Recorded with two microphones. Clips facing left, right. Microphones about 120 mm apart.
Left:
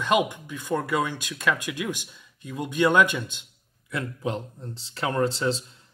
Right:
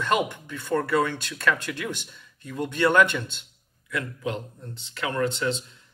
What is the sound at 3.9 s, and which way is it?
Speech, 30° left (ahead or behind).